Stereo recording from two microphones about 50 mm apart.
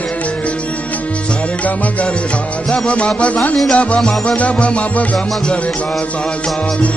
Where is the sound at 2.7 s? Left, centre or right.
Left.